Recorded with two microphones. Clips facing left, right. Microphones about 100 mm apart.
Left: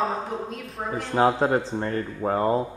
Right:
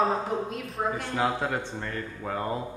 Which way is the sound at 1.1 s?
35° left (ahead or behind).